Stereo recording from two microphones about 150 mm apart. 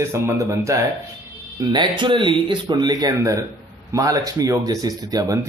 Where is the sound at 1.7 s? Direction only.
30° right (ahead or behind).